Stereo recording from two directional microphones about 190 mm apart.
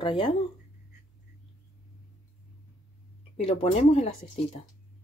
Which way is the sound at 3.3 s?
30° left (ahead or behind).